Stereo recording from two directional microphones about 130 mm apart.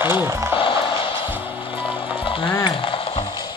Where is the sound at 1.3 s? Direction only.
15° right (ahead or behind).